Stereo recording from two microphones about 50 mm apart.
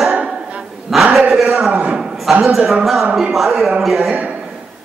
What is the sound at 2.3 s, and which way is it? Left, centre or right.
A man's voice, centre.